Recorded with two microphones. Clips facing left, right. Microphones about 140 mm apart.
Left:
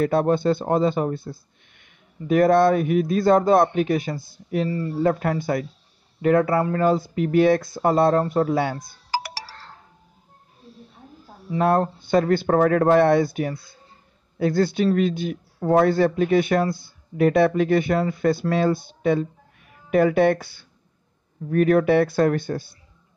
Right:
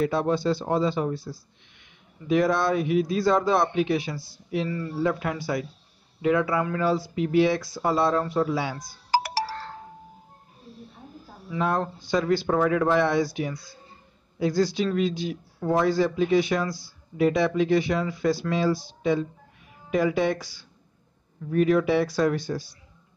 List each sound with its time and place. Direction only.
0.0 s a man's voice: 55° left (ahead or behind)
4.6 s speech: 35° left (ahead or behind)
5.0 s a man's voice: 50° left (ahead or behind)
11.6 s speech: 55° left (ahead or behind)